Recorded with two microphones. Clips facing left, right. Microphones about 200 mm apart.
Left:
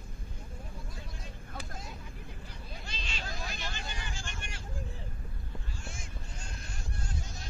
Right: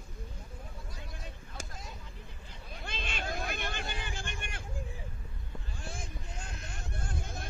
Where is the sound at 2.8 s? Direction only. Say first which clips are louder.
Right 6 dB; 55° right (ahead or behind).